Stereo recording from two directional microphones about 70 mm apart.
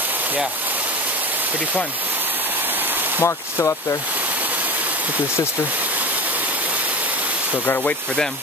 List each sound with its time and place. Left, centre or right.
3.2 s speech: left